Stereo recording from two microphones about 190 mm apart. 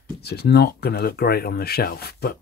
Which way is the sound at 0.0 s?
60° left (ahead or behind).